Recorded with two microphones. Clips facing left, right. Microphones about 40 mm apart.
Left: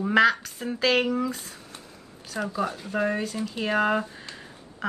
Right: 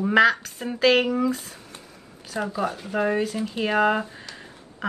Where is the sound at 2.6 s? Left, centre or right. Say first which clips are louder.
Right 2 dB; centre.